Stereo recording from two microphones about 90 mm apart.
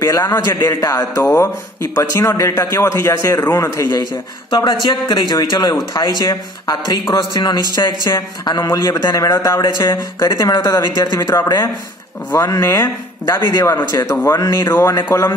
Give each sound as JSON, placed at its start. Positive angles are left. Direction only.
{"t": 0.0, "sound": "a man's voice", "side_deg": 45}
{"t": 3.8, "sound": "a man's voice", "side_deg": 50}
{"t": 12.6, "sound": "speech", "side_deg": 30}
{"t": 13.2, "sound": "speech", "side_deg": 55}
{"t": 13.7, "sound": "a man's voice", "side_deg": 35}
{"t": 14.4, "sound": "speech", "side_deg": 50}
{"t": 15.1, "sound": "a man's voice", "side_deg": 30}